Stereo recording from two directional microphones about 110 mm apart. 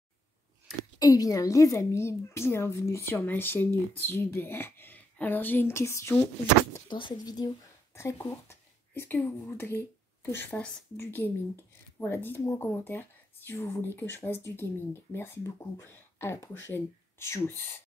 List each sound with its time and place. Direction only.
0.9 s a woman's voice: 35° left (ahead or behind)
6.9 s speech: 45° left (ahead or behind)
7.9 s a woman's voice: 25° left (ahead or behind)